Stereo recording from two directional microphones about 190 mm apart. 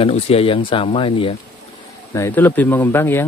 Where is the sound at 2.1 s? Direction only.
15° left (ahead or behind).